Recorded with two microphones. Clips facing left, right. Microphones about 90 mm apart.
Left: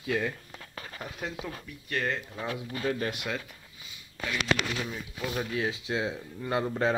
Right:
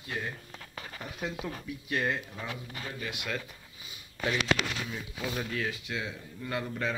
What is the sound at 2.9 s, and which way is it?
Speech, 40° left (ahead or behind).